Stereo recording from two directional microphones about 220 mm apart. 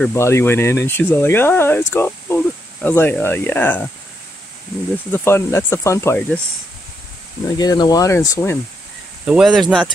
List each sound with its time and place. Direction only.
0.0 s speech: 10° left (ahead or behind)
5.1 s speech: 10° left (ahead or behind)
7.5 s speech: 15° left (ahead or behind)
9.2 s speech: 5° right (ahead or behind)